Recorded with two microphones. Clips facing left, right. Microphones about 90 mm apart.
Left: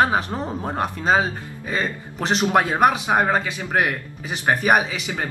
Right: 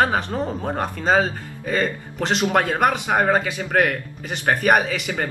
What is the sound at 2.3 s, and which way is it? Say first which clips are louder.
Speech: left 2 dB; 25° left (ahead or behind).